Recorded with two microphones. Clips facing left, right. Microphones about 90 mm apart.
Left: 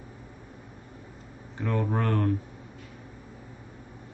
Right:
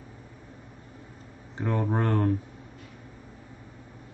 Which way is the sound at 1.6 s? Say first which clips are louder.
Right 1 dB; 20° right (ahead or behind).